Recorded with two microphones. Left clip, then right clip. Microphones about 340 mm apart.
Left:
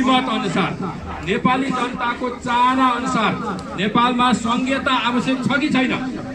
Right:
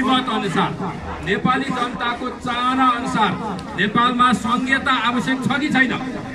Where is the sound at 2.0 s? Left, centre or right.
Centre.